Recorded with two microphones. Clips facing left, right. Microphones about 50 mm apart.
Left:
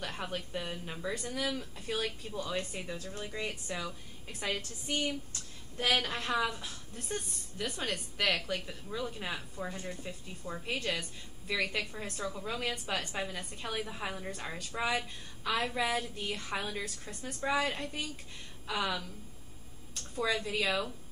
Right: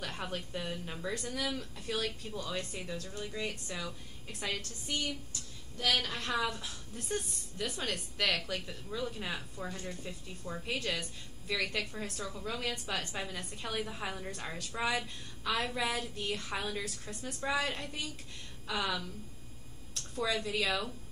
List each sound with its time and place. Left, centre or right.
0.0 s a woman's voice: centre
4.8 s a woman's voice: left